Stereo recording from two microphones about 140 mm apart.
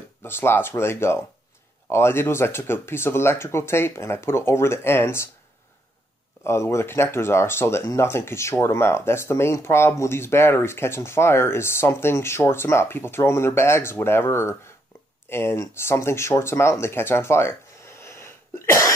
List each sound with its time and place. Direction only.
0.2 s speech: 15° left (ahead or behind)
6.4 s speech: 20° left (ahead or behind)